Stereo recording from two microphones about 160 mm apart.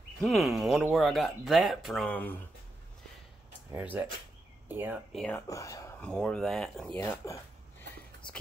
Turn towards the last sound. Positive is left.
turn(degrees=5)  # may be behind; listen again after turning